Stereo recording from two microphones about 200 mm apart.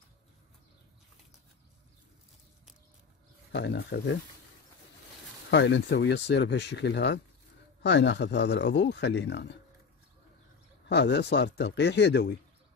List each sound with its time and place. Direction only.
3.5 s a man's voice: 60° left (ahead or behind)
5.5 s a man's voice: 60° left (ahead or behind)
10.9 s a man's voice: 60° left (ahead or behind)